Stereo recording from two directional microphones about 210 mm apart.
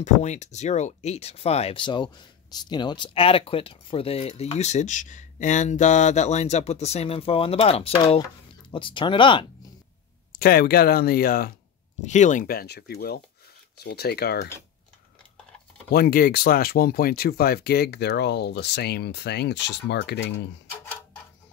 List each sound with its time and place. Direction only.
0.0 s speech: 35° left (ahead or behind)
10.4 s speech: 45° left (ahead or behind)
12.0 s speech: 35° left (ahead or behind)
15.9 s speech: 45° left (ahead or behind)